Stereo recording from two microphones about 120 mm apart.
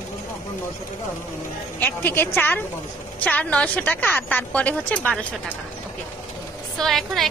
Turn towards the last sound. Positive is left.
turn(degrees=0)  # may be behind; listen again after turning